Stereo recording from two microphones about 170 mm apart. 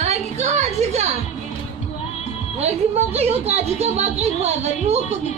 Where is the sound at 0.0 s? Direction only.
40° right (ahead or behind).